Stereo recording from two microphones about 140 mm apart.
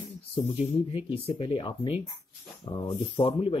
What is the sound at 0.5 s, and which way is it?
Speech, 50° left (ahead or behind).